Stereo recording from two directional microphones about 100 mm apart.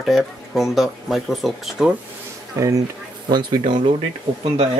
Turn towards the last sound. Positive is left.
turn(degrees=-70)  # may be behind; listen again after turning